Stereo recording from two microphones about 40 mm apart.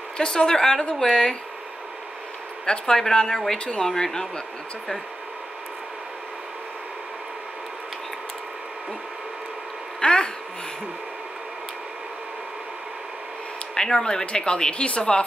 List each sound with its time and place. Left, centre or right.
0.2 s a woman's voice: left
2.6 s a woman's voice: left
9.9 s a sound: left
13.7 s speech: centre
14.2 s speech: left